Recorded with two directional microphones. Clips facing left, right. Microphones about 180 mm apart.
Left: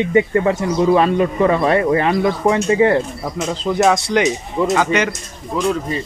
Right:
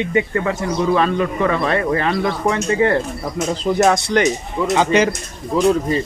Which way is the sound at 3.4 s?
5° right (ahead or behind).